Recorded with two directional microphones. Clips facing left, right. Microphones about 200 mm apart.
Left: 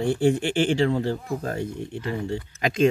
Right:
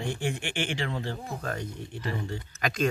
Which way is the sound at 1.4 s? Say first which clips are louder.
Left 6 dB; 25° left (ahead or behind).